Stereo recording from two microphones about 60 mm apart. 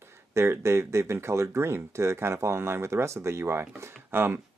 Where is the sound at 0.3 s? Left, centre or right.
Right.